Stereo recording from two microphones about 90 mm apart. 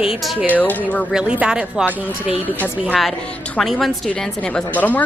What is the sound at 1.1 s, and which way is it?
Speech, 10° right (ahead or behind).